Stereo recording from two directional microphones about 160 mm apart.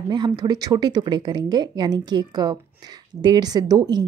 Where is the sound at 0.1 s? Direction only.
25° right (ahead or behind).